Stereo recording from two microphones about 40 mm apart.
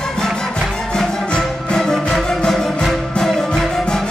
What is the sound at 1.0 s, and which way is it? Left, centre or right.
Music, centre.